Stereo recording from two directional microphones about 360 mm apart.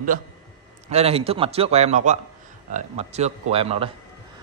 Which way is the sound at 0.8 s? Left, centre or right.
Centre.